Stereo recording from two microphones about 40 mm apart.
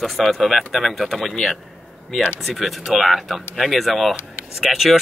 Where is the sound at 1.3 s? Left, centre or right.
Centre.